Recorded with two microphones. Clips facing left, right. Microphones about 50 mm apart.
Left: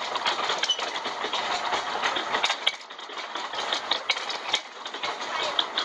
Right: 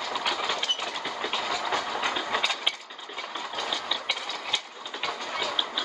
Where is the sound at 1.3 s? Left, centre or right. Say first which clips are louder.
Left 1 dB; left.